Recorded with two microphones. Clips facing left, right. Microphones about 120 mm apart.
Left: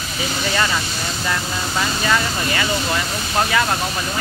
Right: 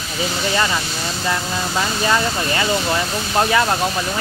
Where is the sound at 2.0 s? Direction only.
25° right (ahead or behind).